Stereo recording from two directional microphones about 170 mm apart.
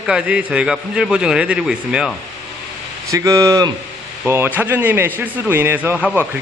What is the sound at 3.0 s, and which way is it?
Speech, 20° right (ahead or behind).